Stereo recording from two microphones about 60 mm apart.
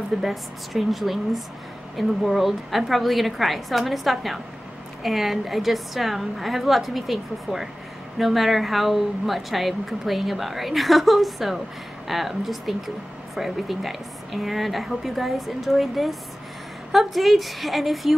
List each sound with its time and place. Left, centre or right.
0.2 s speech: centre